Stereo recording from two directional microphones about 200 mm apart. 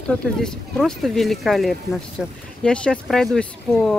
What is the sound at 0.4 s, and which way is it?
Speech, 5° left (ahead or behind).